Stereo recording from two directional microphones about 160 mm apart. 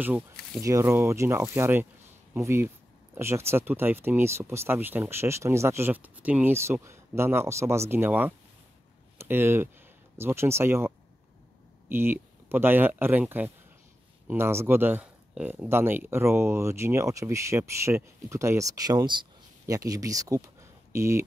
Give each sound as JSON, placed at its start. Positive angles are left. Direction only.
{"t": 0.6, "sound": "speech", "side_deg": -20}
{"t": 11.9, "sound": "speech", "side_deg": -15}